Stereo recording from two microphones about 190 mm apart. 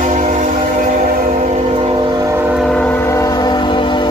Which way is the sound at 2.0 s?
15° right (ahead or behind).